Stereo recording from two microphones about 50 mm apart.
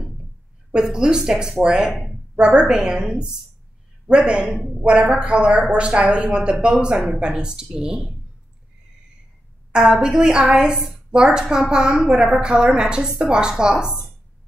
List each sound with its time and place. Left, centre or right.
0.7 s a woman's voice: centre
9.7 s a woman's voice: centre